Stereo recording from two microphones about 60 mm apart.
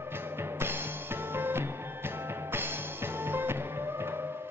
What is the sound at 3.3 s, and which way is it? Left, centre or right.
Music, right.